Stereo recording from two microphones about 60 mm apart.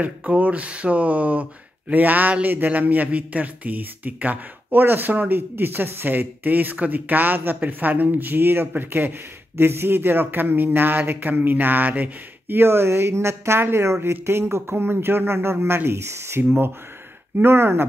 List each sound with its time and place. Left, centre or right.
0.0 s a man's voice: right